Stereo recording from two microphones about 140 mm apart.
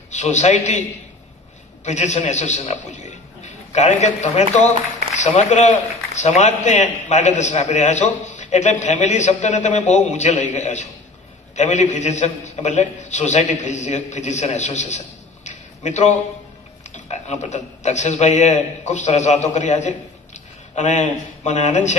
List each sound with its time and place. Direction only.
0.1 s a man's voice: 55° left (ahead or behind)
1.9 s a man's voice: 55° left (ahead or behind)